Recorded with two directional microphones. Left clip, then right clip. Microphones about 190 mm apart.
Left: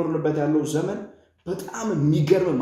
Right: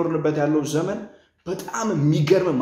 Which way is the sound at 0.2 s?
5° right (ahead or behind).